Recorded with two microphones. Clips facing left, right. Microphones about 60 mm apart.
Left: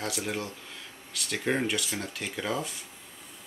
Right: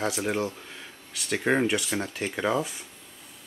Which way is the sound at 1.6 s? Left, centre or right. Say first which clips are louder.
Right 5 dB; right.